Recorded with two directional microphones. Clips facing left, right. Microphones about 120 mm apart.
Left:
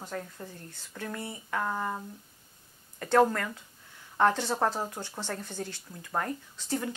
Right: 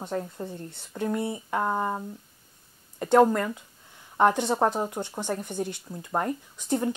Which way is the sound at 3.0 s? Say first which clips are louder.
Right 4 dB; 20° right (ahead or behind).